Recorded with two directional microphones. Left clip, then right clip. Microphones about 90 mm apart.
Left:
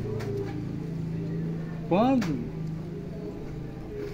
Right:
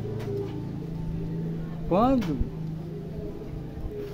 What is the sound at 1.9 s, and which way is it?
Speech, 40° right (ahead or behind).